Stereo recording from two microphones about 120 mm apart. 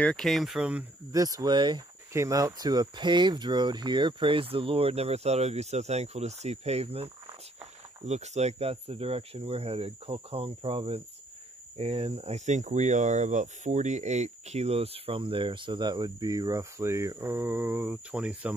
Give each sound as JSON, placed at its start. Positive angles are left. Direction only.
{"t": 0.0, "sound": "speech", "side_deg": 5}
{"t": 1.1, "sound": "speech", "side_deg": -30}
{"t": 2.1, "sound": "speech", "side_deg": -25}
{"t": 8.0, "sound": "speech", "side_deg": -70}